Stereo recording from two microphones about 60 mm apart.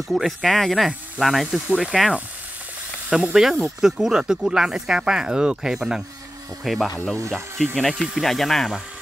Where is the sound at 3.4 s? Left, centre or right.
Centre.